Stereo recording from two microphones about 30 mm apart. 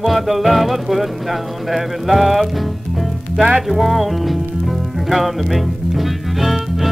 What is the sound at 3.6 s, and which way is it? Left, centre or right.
Music, centre.